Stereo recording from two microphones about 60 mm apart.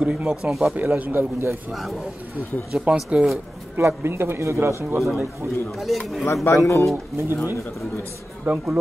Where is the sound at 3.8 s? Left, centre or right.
Right.